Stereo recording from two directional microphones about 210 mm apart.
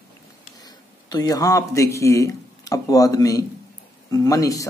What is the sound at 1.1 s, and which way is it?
Speech, 15° left (ahead or behind).